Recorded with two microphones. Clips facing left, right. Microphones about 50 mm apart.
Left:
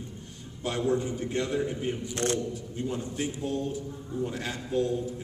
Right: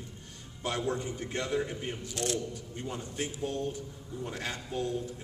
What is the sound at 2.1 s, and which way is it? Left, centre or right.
Speech, left.